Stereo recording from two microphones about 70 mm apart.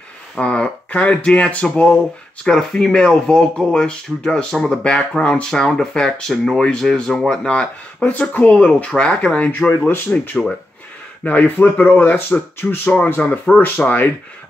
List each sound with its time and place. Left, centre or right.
0.4 s speech: centre
2.4 s speech: centre
7.4 s speech: centre